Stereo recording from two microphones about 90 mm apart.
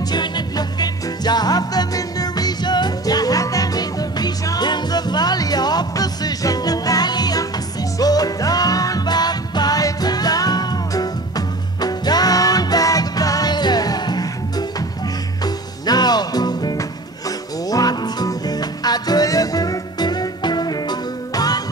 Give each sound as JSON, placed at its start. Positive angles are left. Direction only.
{"t": 0.1, "sound": "music", "side_deg": 50}
{"t": 15.4, "sound": "music", "side_deg": 50}